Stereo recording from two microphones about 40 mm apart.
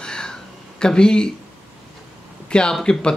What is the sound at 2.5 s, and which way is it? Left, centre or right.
Speech, left.